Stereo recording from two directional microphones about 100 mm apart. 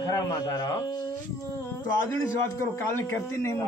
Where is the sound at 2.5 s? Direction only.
25° left (ahead or behind).